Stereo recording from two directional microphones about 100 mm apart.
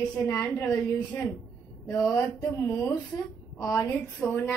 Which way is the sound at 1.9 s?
30° left (ahead or behind).